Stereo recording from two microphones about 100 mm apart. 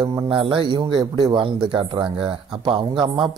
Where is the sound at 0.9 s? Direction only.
45° right (ahead or behind).